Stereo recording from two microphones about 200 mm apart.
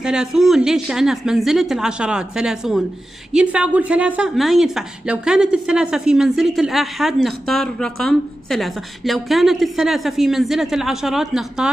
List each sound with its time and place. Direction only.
0.0 s a woman's voice: 5° right (ahead or behind)